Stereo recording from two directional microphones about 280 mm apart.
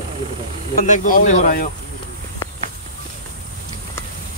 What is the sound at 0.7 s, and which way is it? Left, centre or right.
Speech, left.